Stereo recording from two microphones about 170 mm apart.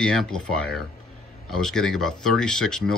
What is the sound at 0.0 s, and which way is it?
Speech, 5° left (ahead or behind).